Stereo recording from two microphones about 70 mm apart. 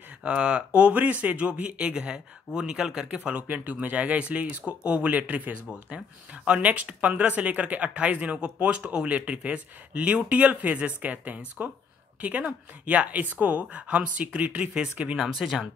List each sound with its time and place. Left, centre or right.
0.2 s speech: centre
15.1 s speech: centre